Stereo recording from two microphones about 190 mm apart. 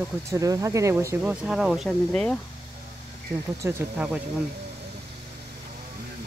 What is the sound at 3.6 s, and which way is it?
Speech, 15° right (ahead or behind).